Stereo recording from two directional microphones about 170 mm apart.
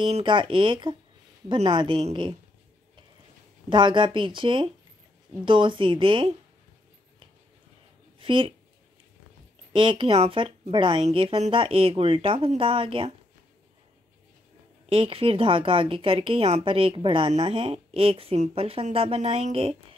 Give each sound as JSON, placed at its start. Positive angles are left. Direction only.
{"t": 0.0, "sound": "speech", "side_deg": -30}
{"t": 3.6, "sound": "speech", "side_deg": -25}
{"t": 8.2, "sound": "speech", "side_deg": -30}
{"t": 9.7, "sound": "a woman's voice", "side_deg": -30}
{"t": 14.9, "sound": "a woman's voice", "side_deg": -30}